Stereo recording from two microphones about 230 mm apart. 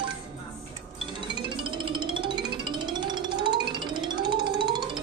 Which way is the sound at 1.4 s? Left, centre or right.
Right.